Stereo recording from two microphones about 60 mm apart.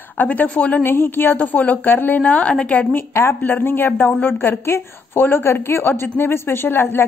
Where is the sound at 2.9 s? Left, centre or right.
Left.